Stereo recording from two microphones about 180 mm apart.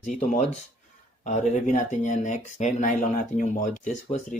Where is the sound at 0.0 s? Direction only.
45° left (ahead or behind).